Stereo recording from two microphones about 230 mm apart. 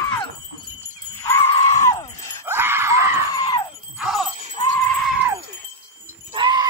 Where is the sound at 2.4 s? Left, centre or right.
Centre.